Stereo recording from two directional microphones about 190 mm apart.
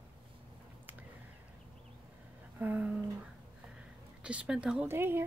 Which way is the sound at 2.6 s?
10° right (ahead or behind).